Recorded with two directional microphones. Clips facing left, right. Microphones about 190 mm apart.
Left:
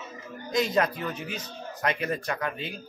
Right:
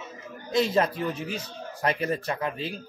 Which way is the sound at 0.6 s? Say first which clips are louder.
Right 2 dB; 30° right (ahead or behind).